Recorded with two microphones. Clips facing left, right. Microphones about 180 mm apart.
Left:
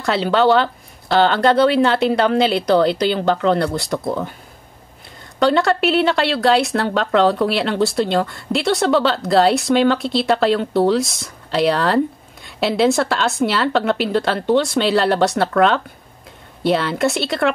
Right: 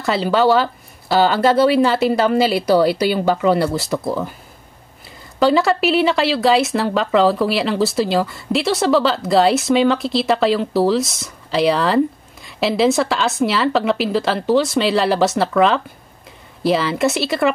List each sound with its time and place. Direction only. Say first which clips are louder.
0.0 s speech: even; centre (ahead or behind)
5.4 s speech: right 1 dB; centre (ahead or behind)